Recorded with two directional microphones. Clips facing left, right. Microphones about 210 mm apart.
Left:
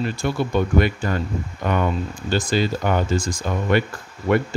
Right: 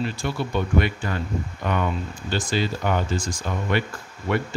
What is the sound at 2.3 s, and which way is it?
Speech, 40° left (ahead or behind).